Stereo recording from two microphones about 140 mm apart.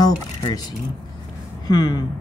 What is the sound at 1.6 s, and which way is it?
Speech, 30° left (ahead or behind).